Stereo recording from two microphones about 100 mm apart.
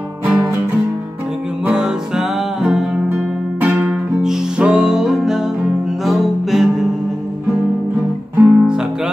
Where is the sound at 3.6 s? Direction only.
20° right (ahead or behind).